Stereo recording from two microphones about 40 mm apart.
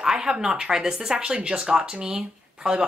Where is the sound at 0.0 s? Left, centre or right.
Centre.